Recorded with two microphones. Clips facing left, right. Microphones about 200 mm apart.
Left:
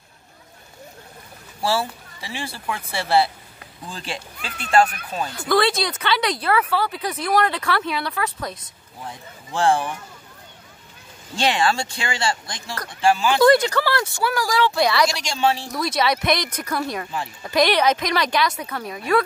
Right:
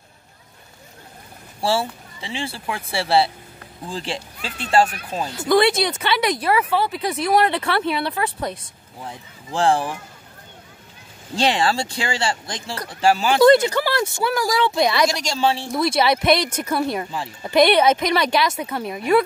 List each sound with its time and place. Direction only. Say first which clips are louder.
1.6 s speech: right 1 dB; 25° right (ahead or behind)
6.4 s speech: right 1 dB; 10° right (ahead or behind)
6.7 s speech: right 2 dB; 25° right (ahead or behind)
11.3 s speech: right 1 dB; 30° right (ahead or behind)
13.4 s speech: right 3 dB; 20° right (ahead or behind)
15.1 s speech: right 1 dB; 35° right (ahead or behind)